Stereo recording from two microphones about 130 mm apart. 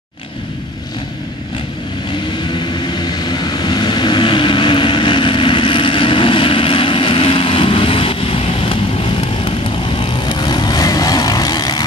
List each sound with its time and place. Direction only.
2.6 s vehicle: 35° left (ahead or behind)